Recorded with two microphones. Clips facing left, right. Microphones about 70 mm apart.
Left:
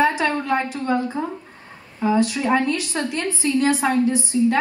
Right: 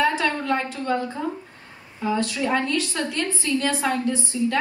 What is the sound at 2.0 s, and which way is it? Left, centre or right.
A woman's voice, left.